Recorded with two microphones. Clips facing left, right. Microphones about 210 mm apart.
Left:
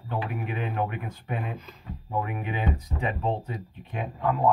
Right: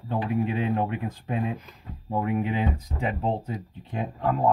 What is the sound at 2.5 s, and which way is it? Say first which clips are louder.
Speech: right 2 dB; 30° right (ahead or behind).